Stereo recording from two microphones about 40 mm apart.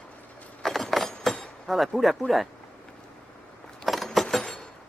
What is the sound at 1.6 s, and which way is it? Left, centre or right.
Speech, centre.